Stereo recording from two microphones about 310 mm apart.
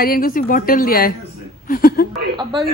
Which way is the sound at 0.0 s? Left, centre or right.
Left.